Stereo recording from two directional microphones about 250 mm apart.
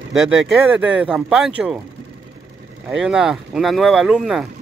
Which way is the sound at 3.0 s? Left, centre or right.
Centre.